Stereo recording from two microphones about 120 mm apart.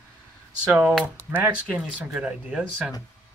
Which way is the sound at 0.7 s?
5° right (ahead or behind).